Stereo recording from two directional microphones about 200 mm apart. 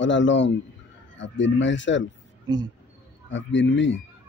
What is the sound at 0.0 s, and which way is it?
Speech, 65° left (ahead or behind).